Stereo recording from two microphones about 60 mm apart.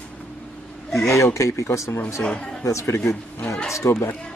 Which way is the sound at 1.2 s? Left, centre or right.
Left.